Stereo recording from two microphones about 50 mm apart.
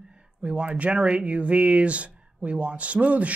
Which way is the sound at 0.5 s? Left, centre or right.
Right.